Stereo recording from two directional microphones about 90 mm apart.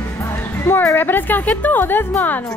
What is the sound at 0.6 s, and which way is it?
A woman's voice, 25° left (ahead or behind).